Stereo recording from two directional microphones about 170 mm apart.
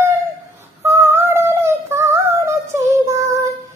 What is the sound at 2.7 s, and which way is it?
Child singing, 15° right (ahead or behind).